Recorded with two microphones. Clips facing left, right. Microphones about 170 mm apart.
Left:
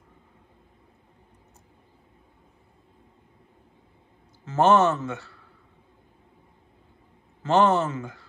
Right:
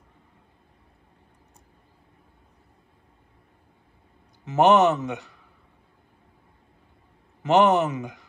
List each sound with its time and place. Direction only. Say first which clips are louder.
4.5 s a man's voice: right 2 dB; 15° right (ahead or behind)
7.4 s a man's voice: right 2 dB; 15° right (ahead or behind)